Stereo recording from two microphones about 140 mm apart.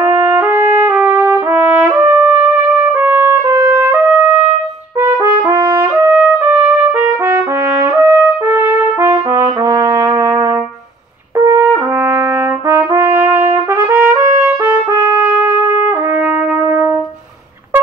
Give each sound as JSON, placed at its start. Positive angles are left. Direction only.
{"t": 0.1, "sound": "trumpet", "side_deg": -15}
{"t": 11.3, "sound": "brass instrument", "side_deg": -25}
{"t": 15.6, "sound": "trumpet", "side_deg": -20}